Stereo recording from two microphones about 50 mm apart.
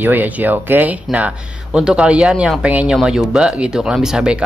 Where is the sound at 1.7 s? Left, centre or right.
Centre.